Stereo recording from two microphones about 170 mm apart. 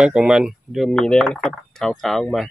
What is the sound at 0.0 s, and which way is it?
Speech, 5° right (ahead or behind).